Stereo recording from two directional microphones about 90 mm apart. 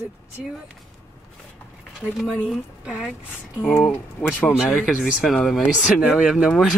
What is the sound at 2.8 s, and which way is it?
Speech, 10° right (ahead or behind).